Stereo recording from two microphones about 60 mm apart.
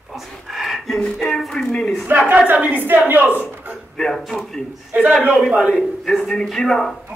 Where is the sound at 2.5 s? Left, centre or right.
Right.